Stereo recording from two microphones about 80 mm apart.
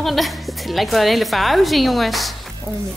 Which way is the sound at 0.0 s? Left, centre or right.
Centre.